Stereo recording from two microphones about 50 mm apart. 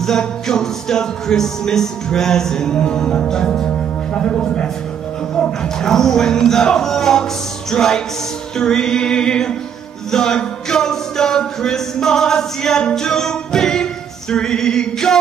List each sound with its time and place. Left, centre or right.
0.0 s music: centre